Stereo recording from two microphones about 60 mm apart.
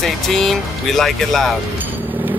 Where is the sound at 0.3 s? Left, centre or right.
Centre.